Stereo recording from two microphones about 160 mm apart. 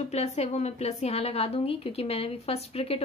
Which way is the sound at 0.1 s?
40° left (ahead or behind).